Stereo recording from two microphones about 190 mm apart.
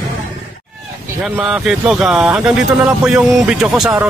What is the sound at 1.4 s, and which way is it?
Speech, 5° right (ahead or behind).